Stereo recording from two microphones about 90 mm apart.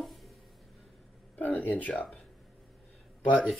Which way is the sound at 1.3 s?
20° left (ahead or behind).